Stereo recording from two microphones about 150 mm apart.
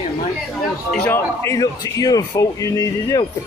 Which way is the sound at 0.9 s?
15° left (ahead or behind).